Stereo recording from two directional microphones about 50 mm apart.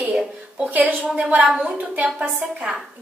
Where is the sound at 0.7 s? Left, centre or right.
Right.